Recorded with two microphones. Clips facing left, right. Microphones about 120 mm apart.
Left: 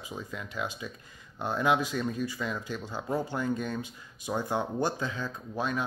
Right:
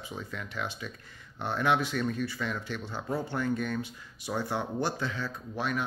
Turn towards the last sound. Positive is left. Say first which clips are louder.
# left 1 dB
turn(degrees=20)  # may be behind; listen again after turning